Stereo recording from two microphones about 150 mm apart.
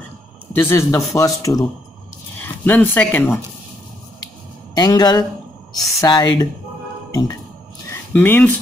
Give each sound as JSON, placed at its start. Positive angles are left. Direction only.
{"t": 0.6, "sound": "speech", "side_deg": 15}
{"t": 4.7, "sound": "speech", "side_deg": 25}
{"t": 8.1, "sound": "speech", "side_deg": 10}